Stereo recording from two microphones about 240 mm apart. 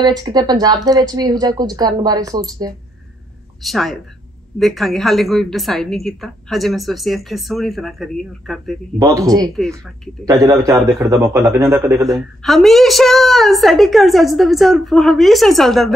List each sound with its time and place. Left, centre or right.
0.0 s speech: centre
3.6 s a woman's voice: centre
8.9 s speech: centre
12.4 s a woman's voice: centre